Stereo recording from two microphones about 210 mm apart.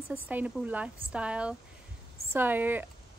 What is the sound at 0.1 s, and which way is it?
A woman's voice, 10° right (ahead or behind).